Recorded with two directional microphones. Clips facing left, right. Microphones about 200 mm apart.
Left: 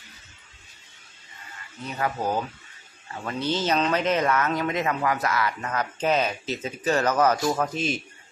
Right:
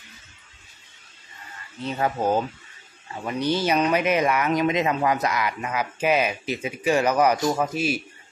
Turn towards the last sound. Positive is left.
turn(degrees=-10)  # may be behind; listen again after turning